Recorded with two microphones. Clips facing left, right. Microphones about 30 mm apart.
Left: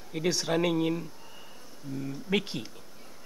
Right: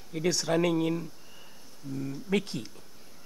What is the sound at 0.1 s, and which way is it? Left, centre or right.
Speech, centre.